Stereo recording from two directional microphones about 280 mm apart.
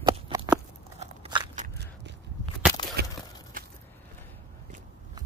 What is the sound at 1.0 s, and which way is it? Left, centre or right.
Crunch, centre.